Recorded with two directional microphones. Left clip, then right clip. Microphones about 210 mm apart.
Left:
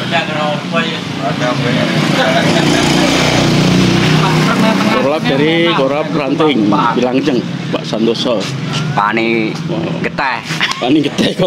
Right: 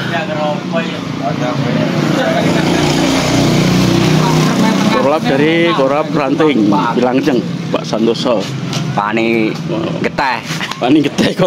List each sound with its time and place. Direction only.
5.0 s vehicle: centre (ahead or behind)
5.9 s speech: centre (ahead or behind)
8.9 s speech: 20° right (ahead or behind)
10.9 s speech: centre (ahead or behind)